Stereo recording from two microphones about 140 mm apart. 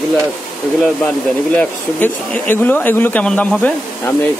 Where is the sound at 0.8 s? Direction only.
5° left (ahead or behind).